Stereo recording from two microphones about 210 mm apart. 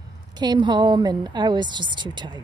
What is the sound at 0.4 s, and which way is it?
A woman's voice, 20° right (ahead or behind).